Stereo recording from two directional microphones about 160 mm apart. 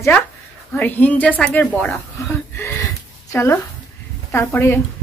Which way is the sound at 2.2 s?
20° left (ahead or behind).